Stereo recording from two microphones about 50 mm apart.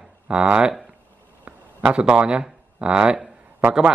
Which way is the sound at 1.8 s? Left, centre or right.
Centre.